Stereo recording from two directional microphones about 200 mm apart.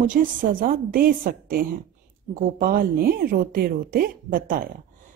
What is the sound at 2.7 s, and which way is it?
Speech, 50° right (ahead or behind).